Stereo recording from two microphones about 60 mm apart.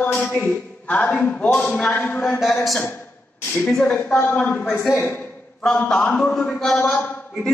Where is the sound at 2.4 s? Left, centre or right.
Centre.